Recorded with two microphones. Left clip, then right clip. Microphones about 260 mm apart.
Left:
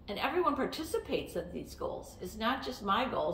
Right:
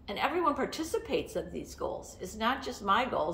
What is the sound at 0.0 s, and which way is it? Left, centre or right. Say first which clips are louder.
A woman's voice: right 2 dB; centre.